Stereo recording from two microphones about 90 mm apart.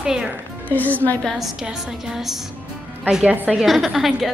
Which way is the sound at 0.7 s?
20° left (ahead or behind).